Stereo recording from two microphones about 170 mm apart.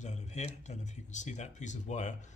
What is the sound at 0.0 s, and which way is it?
Speech, 40° left (ahead or behind).